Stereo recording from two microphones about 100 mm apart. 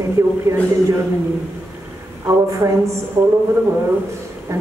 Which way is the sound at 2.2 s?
30° right (ahead or behind).